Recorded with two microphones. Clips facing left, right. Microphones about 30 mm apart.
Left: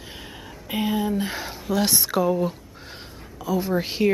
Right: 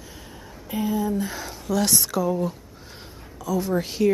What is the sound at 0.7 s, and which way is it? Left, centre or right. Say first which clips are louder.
Speech: left 1 dB; left.